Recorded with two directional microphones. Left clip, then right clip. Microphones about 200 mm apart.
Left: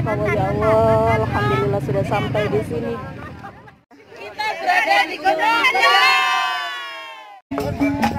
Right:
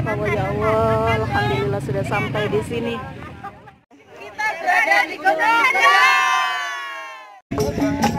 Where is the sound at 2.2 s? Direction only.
50° right (ahead or behind).